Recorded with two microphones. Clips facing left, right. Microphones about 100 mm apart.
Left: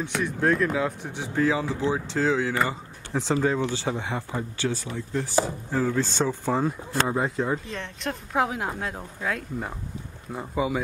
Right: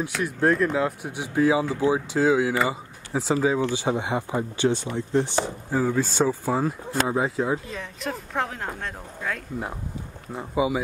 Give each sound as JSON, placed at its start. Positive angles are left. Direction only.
{"t": 0.1, "sound": "speech", "side_deg": 5}
{"t": 5.7, "sound": "speech", "side_deg": -10}